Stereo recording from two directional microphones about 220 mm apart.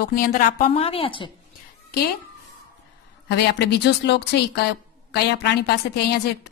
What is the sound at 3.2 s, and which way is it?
Speech, 50° left (ahead or behind).